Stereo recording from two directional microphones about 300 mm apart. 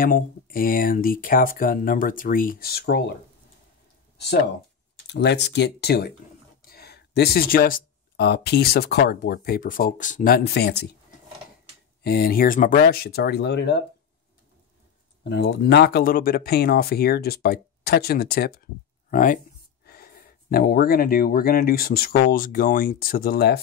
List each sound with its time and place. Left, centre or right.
0.0 s speech: left
5.0 s speech: left
12.0 s speech: left
15.2 s speech: left